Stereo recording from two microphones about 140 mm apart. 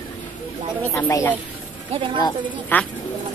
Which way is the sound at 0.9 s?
20° left (ahead or behind).